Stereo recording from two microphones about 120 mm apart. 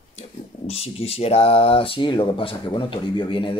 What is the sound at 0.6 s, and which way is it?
Speech, 60° left (ahead or behind).